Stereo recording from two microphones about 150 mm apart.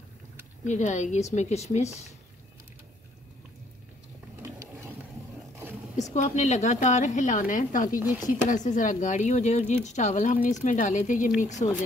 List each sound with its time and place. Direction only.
0.7 s a woman's voice: 55° left (ahead or behind)
4.4 s a sound: 20° right (ahead or behind)
6.1 s a woman's voice: 50° left (ahead or behind)